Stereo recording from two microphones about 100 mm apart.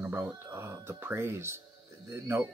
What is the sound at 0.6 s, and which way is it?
Speech, 25° right (ahead or behind).